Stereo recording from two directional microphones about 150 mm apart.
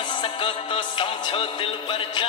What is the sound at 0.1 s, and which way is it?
Music, 30° left (ahead or behind).